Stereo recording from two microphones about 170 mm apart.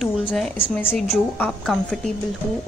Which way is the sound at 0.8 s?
10° left (ahead or behind).